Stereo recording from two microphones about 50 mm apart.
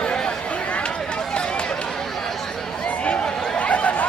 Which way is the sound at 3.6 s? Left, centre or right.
Left.